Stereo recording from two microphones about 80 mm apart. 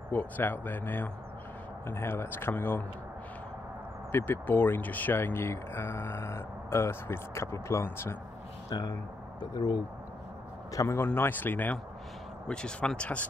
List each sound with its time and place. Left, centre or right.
0.1 s speech: left
4.1 s speech: left
8.6 s a man's voice: left
11.1 s speech: left
12.4 s speech: centre